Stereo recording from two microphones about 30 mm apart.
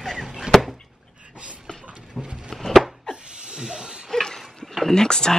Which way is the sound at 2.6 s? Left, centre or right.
Centre.